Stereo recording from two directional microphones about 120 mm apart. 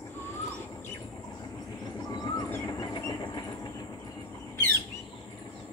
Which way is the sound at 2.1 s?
35° left (ahead or behind).